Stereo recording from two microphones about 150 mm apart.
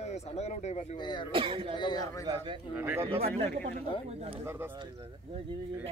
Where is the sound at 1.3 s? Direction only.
35° right (ahead or behind).